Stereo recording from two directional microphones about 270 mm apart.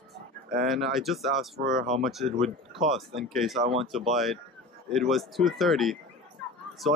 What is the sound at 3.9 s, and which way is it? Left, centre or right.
Speech, centre.